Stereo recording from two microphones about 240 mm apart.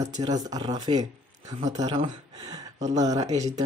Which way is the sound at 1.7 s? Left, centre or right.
Centre.